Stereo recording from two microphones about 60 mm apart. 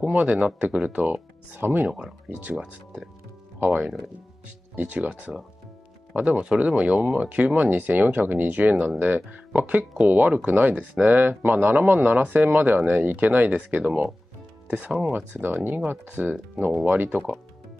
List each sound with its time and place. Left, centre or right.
0.2 s speech: right
1.9 s speech: centre
4.7 s speech: right
14.9 s speech: centre
15.4 s speech: right